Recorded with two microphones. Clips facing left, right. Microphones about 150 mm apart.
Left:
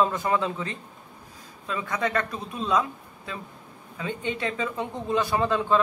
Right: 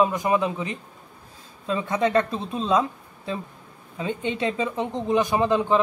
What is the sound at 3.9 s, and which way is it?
Speech, 20° right (ahead or behind).